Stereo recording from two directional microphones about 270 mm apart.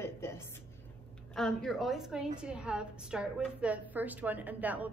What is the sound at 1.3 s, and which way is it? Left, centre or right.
A woman's voice, centre.